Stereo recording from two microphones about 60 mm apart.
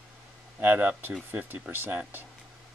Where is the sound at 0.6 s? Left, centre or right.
Right.